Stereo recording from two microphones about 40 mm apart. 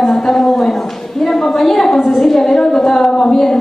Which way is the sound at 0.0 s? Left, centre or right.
Centre.